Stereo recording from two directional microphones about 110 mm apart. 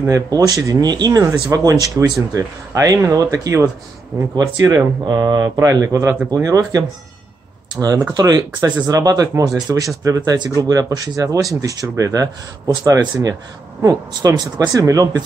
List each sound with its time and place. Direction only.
0.3 s speech: 30° right (ahead or behind)